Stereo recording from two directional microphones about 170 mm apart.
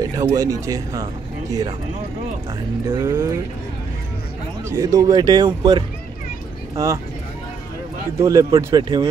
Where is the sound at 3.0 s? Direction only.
15° right (ahead or behind).